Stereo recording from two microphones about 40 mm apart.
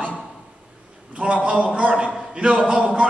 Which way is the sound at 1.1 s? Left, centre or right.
Right.